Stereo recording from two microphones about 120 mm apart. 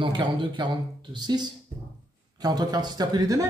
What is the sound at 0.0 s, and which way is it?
Speech, 40° right (ahead or behind).